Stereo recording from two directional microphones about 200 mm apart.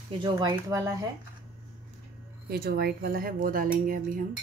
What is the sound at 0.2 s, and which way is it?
Speech, 25° right (ahead or behind).